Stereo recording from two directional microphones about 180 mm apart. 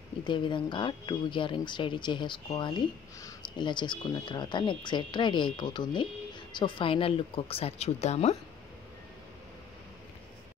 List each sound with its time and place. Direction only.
0.2 s speech: 25° left (ahead or behind)